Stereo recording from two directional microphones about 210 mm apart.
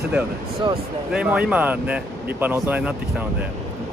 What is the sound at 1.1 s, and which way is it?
Speech, 5° right (ahead or behind).